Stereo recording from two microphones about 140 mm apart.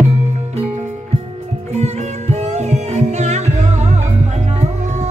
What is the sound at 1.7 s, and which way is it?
Music, 50° right (ahead or behind).